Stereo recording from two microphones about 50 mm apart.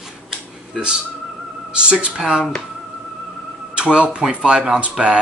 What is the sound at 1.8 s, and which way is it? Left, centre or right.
Speech, right.